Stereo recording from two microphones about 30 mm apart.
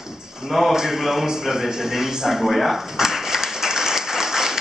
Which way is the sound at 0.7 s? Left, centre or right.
Centre.